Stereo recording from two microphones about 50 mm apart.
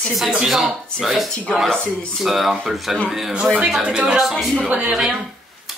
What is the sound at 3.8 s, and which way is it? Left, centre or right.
Speech, right.